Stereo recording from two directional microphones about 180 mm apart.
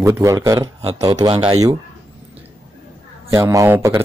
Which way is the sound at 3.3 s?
20° right (ahead or behind).